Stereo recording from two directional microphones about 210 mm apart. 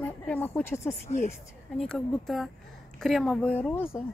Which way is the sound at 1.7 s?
Centre (ahead or behind).